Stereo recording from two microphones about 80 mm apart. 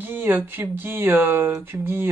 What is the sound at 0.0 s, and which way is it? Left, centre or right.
Speech, right.